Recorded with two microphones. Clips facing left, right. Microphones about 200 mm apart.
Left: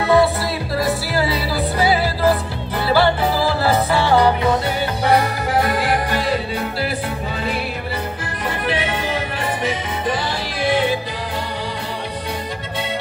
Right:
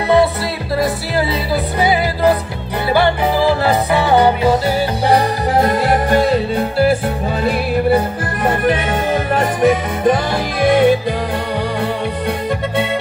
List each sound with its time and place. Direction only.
1.1 s music: 20° right (ahead or behind)
5.0 s music: 40° right (ahead or behind)
8.5 s music: 50° right (ahead or behind)